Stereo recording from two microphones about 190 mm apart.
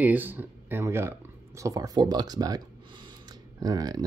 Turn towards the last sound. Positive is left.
turn(degrees=-20)  # may be behind; listen again after turning